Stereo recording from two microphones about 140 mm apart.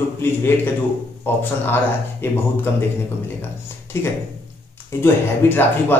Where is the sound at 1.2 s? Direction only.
15° left (ahead or behind).